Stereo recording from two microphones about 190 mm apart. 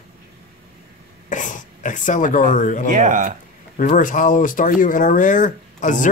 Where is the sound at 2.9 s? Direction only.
40° right (ahead or behind).